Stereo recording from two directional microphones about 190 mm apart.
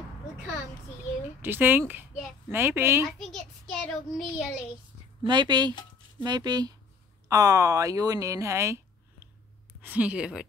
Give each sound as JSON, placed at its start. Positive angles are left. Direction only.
{"t": 1.4, "sound": "speech", "side_deg": -10}
{"t": 3.2, "sound": "child singing", "side_deg": 5}
{"t": 5.2, "sound": "speech", "side_deg": -25}